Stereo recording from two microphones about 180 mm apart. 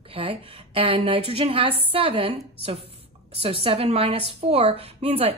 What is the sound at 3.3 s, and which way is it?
A woman's voice, 30° right (ahead or behind).